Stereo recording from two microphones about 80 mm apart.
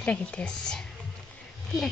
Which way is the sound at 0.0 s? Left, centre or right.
Centre.